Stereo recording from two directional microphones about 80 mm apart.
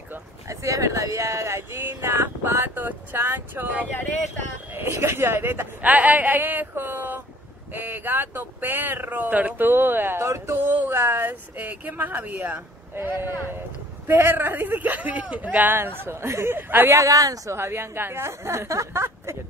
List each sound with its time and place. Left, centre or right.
0.5 s speech: right; by 12.6 s centre
12.9 s speech: right
17.0 s a woman's voice: right
17.6 s speech: right